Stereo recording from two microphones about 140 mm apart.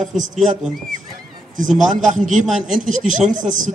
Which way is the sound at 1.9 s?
65° right (ahead or behind).